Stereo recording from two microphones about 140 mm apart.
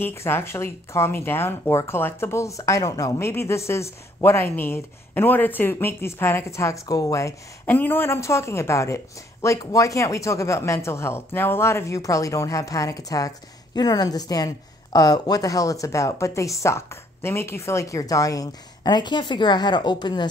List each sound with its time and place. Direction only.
0.0 s speech: 20° left (ahead or behind)